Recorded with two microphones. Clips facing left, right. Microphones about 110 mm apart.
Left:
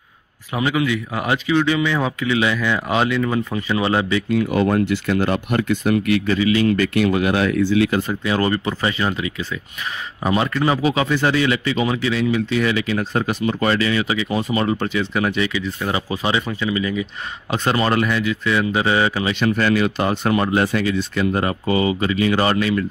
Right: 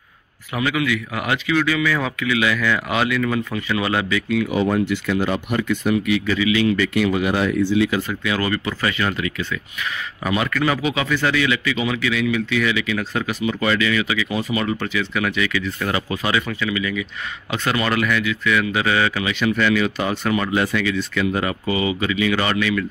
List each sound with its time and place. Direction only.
0.6 s speech: 25° left (ahead or behind)
4.6 s speech: 60° left (ahead or behind)
7.1 s speech: 80° left
8.1 s a man's voice: 30° left (ahead or behind)